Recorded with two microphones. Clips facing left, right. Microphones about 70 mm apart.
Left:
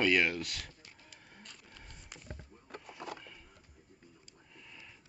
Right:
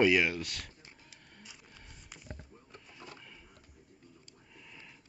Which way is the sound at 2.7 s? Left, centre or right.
Left.